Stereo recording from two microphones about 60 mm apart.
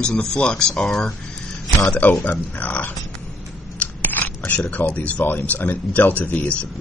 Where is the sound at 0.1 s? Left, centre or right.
Centre.